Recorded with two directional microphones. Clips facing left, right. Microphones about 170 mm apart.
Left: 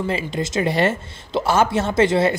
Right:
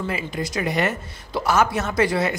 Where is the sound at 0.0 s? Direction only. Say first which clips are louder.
Left 4 dB; 25° left (ahead or behind).